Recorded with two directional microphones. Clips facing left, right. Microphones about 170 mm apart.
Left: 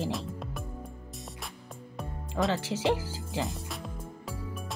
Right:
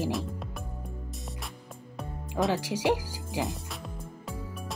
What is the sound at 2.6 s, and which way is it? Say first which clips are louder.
Speech: right 1 dB; 10° right (ahead or behind).